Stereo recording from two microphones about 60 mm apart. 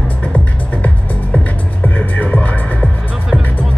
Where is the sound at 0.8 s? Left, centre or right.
Left.